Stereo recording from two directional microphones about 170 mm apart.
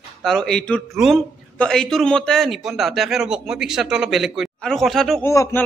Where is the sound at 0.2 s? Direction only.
5° left (ahead or behind).